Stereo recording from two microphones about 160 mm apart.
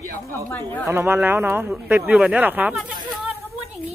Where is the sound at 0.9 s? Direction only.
15° right (ahead or behind).